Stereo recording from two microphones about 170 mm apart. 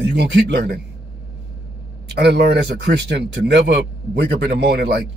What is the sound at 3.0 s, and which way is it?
Speech, 80° right.